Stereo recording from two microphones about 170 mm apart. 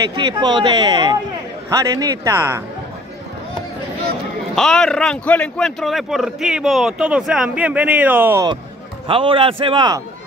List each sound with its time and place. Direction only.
0.1 s a man's voice: 25° right (ahead or behind)
4.6 s speech: centre (ahead or behind)
9.0 s a man's voice: 30° right (ahead or behind)